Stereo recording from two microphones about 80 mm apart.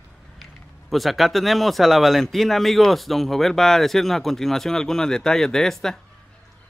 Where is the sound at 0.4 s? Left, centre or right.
Centre.